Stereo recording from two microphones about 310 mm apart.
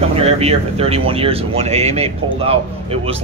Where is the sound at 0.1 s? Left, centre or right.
Centre.